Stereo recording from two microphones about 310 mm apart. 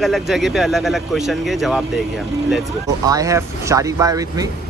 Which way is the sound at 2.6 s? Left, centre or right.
Centre.